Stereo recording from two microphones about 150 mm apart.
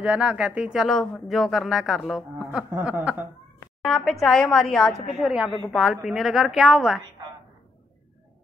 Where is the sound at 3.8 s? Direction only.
Centre (ahead or behind).